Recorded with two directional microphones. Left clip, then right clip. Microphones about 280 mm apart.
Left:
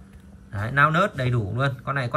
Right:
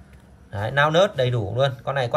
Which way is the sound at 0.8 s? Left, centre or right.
Centre.